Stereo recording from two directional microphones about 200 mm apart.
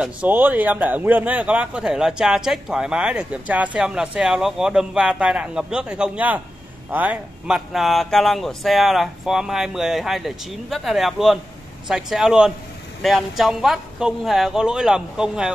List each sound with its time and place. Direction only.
0.0 s a man's voice: 10° right (ahead or behind)